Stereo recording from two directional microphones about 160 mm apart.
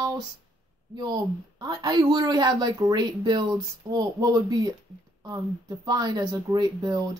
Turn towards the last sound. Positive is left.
turn(degrees=-25)  # may be behind; listen again after turning